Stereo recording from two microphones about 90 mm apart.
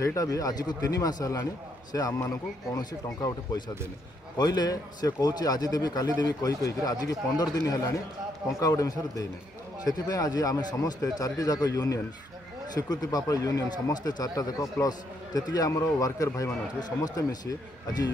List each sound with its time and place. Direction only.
0.0 s a man's voice: 35° left (ahead or behind)
2.8 s a man's voice: 50° left (ahead or behind)